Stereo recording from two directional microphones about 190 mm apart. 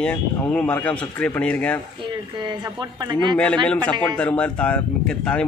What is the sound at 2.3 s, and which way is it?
A woman's voice, 20° right (ahead or behind).